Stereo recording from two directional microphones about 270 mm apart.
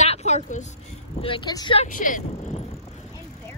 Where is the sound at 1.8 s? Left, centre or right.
Left.